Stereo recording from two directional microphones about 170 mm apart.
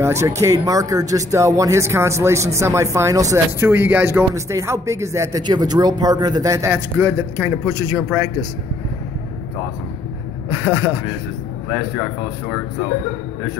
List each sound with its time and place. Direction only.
0.0 s speech: 15° right (ahead or behind)
10.6 s speech: 15° right (ahead or behind)